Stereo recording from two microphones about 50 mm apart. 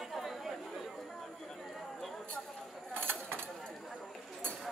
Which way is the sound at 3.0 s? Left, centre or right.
Left.